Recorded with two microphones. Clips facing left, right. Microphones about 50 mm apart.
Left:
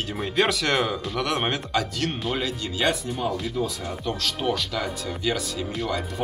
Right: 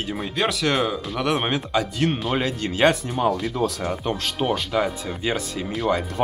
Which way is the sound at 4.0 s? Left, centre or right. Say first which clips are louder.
Even; right.